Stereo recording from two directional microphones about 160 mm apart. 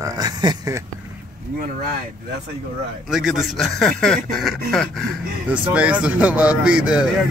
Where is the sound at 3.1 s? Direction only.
Centre (ahead or behind).